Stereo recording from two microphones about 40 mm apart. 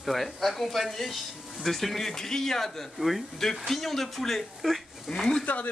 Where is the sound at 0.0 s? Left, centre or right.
Centre.